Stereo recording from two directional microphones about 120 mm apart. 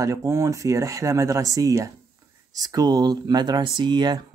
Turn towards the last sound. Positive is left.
turn(degrees=-35)  # may be behind; listen again after turning